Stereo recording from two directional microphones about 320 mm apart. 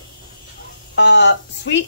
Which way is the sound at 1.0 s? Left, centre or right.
Left.